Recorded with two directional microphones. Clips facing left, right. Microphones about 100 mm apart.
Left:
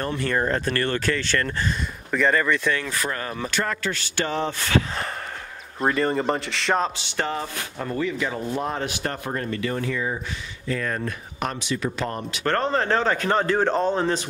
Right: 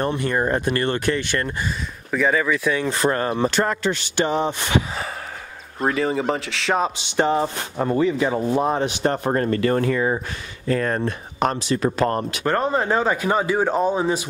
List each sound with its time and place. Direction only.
0.0 s speech: 20° right (ahead or behind)
2.0 s speech: 5° right (ahead or behind)
2.8 s speech: 25° right (ahead or behind)
5.8 s speech: centre (ahead or behind)
7.0 s speech: 20° right (ahead or behind)
9.2 s speech: 45° right (ahead or behind)
10.7 s speech: 40° right (ahead or behind)
11.0 s speech: 30° right (ahead or behind); by 12.4 s 50° right (ahead or behind)
12.4 s speech: 10° right (ahead or behind)